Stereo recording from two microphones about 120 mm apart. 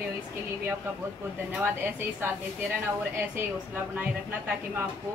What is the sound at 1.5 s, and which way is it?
Speech, 15° right (ahead or behind).